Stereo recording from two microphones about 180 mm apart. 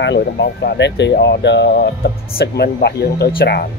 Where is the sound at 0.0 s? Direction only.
80° left.